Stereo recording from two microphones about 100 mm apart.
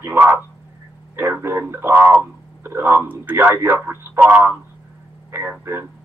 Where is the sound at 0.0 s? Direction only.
20° right (ahead or behind).